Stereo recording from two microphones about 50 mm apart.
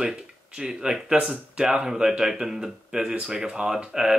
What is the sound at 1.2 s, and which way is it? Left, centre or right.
Speech, right.